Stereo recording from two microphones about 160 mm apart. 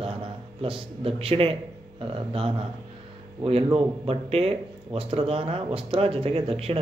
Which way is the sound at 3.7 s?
40° right (ahead or behind).